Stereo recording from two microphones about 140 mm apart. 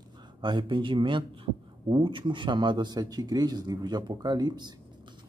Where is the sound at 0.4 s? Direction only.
35° right (ahead or behind).